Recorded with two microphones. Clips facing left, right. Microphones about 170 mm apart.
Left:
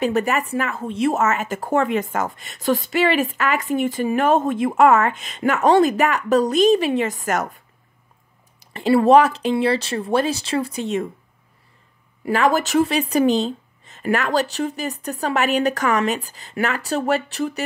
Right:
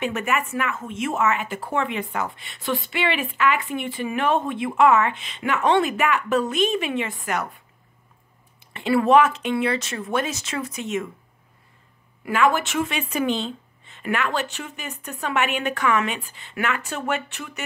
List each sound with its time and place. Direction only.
0.0 s speech: 35° left (ahead or behind)
8.5 s speech: 35° left (ahead or behind)
12.3 s speech: 40° left (ahead or behind)